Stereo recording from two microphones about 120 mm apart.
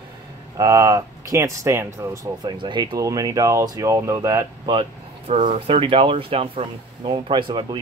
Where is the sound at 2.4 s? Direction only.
35° right (ahead or behind).